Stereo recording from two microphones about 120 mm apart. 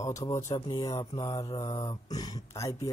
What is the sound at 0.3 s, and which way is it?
Speech, 25° left (ahead or behind).